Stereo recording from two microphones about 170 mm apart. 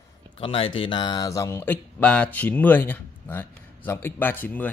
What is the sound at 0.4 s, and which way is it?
Speech, 35° left (ahead or behind).